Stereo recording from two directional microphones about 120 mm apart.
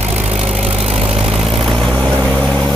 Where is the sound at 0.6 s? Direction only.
5° right (ahead or behind).